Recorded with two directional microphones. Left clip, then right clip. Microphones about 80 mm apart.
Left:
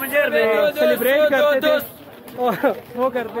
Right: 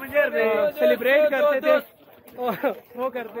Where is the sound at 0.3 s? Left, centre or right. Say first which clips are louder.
Left 5 dB; centre.